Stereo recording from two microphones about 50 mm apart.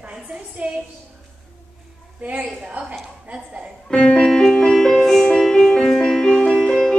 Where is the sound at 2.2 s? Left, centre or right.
Right.